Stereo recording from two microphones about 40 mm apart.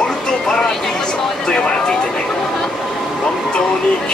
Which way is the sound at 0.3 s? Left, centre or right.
Centre.